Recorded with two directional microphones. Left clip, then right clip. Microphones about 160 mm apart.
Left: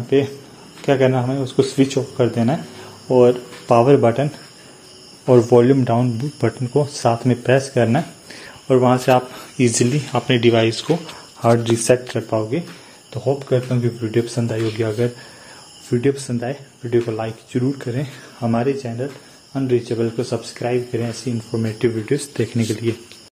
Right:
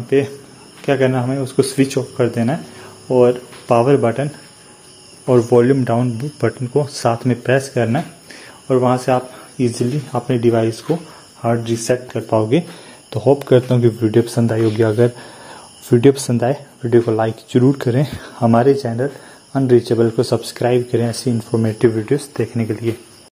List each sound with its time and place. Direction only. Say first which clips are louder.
0.1 s speech: right 1 dB; 10° right (ahead or behind)
10.1 s speech: left 1 dB; 10° right (ahead or behind)
10.4 s speech: right 1 dB; 20° right (ahead or behind)
11.4 s speech: left 3 dB; 10° left (ahead or behind)
13.1 s speech: right 7 dB; 70° right (ahead or behind)
14.1 s speech: right 5 dB; 45° right (ahead or behind)
21.5 s speech: right 5 dB; 35° right (ahead or behind)
22.3 s speech: right 1 dB; 25° left (ahead or behind)